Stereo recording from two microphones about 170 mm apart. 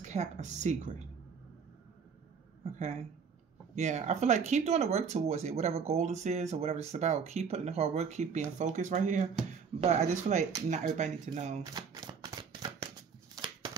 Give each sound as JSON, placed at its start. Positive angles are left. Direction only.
{"t": 0.0, "sound": "a woman's voice", "side_deg": -45}
{"t": 2.6, "sound": "a woman's voice", "side_deg": -35}
{"t": 11.7, "sound": "shuffling cards", "side_deg": -25}